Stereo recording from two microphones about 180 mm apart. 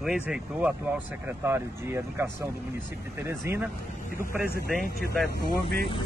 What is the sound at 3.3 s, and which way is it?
Speech, 15° right (ahead or behind).